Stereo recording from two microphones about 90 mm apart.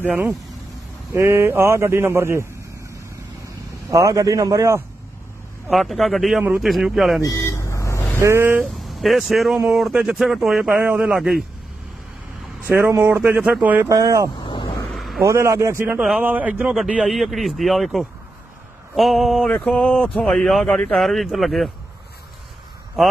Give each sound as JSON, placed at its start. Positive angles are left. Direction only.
{"t": 0.0, "sound": "speech", "side_deg": -20}
{"t": 1.1, "sound": "speech", "side_deg": -30}
{"t": 3.4, "sound": "speech", "side_deg": -35}
{"t": 5.7, "sound": "speech", "side_deg": 0}
{"t": 7.2, "sound": "vehicle", "side_deg": 35}
{"t": 8.2, "sound": "speech", "side_deg": -30}
{"t": 8.7, "sound": "speech", "side_deg": 0}
{"t": 12.6, "sound": "speech", "side_deg": -25}
{"t": 13.8, "sound": "speech", "side_deg": -40}
{"t": 15.0, "sound": "vehicle", "side_deg": 0}
{"t": 15.2, "sound": "speech", "side_deg": -30}
{"t": 19.5, "sound": "speech", "side_deg": 10}
{"t": 23.0, "sound": "speech", "side_deg": 0}